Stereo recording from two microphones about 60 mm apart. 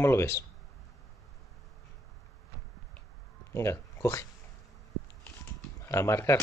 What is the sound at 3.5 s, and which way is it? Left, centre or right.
Speech, left.